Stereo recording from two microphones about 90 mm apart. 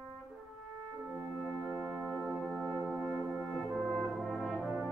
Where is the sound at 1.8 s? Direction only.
15° right (ahead or behind).